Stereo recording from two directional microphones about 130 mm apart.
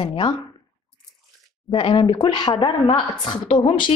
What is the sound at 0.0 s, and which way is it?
Speech, 35° left (ahead or behind).